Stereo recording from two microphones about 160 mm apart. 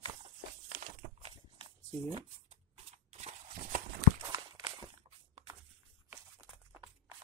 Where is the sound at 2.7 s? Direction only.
40° right (ahead or behind).